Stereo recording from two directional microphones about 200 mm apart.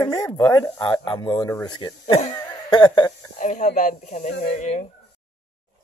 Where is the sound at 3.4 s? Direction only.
40° left (ahead or behind).